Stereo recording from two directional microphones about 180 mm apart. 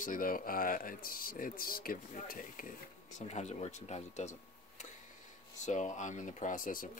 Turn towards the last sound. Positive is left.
turn(degrees=50)  # may be behind; listen again after turning